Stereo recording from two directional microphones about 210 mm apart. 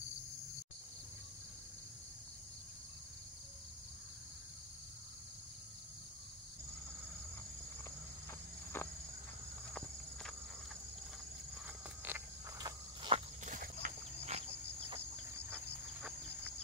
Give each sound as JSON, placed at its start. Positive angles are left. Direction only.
{"t": 8.7, "sound": "a sound", "side_deg": 10}
{"t": 11.6, "sound": "walk", "side_deg": -10}
{"t": 13.5, "sound": "cricket", "side_deg": -40}